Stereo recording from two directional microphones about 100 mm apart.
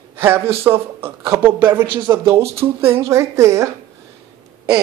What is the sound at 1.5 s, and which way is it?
Speech, 20° right (ahead or behind).